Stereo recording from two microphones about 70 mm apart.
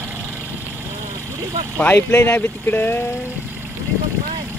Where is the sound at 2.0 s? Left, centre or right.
Left.